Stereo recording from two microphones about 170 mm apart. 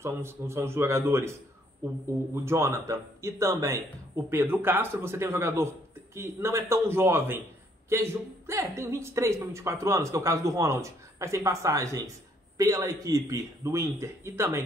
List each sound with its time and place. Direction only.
0.0 s speech: 15° right (ahead or behind)
2.3 s speech: 15° right (ahead or behind)